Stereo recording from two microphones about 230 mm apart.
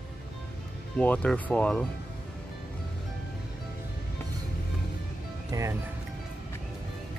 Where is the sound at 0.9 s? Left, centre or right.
Centre.